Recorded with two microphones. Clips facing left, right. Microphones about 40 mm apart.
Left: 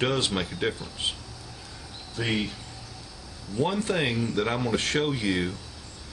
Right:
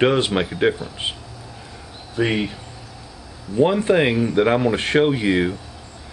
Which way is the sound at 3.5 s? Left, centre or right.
Right.